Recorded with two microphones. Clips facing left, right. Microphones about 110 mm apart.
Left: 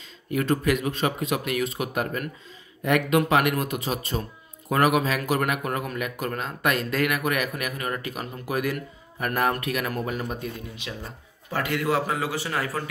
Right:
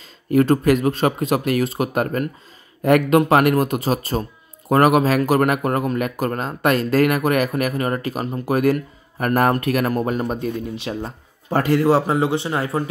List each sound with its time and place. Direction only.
0.3 s speech: 40° right (ahead or behind)